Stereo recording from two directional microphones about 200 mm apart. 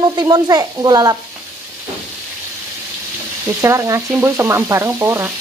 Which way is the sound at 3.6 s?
15° right (ahead or behind).